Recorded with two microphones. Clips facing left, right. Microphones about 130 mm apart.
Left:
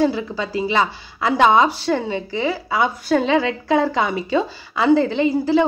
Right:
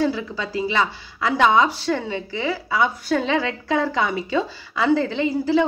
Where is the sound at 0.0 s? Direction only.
25° left (ahead or behind).